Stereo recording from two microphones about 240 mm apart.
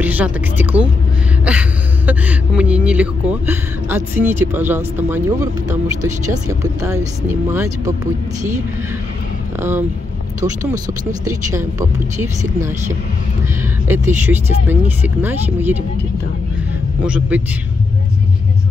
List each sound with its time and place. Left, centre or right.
0.0 s speech: centre
9.6 s speech: centre
11.2 s speech: centre
13.8 s speech: centre
17.0 s a man's voice: centre